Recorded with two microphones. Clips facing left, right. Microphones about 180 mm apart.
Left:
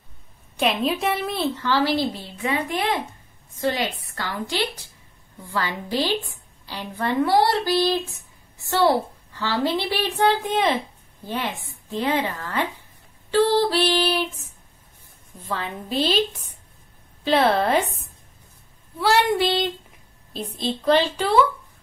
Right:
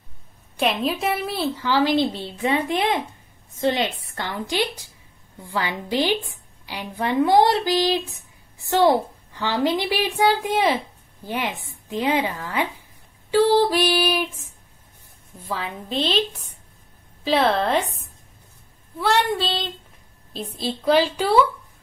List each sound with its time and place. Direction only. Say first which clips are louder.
0.6 s a woman's voice: even; centre (ahead or behind)
15.4 s a woman's voice: even; 5° right (ahead or behind)
18.9 s a woman's voice: left 1 dB; centre (ahead or behind)
19.3 s a sound: left 4 dB; 15° left (ahead or behind)
20.3 s a woman's voice: left 1 dB; 5° right (ahead or behind)